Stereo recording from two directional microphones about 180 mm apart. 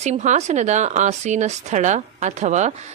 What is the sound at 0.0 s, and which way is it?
A woman's voice, 40° right (ahead or behind).